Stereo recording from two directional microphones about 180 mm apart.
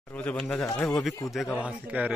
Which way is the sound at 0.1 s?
5° left (ahead or behind).